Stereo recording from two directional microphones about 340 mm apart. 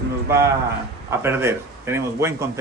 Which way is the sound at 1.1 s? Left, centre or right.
Centre.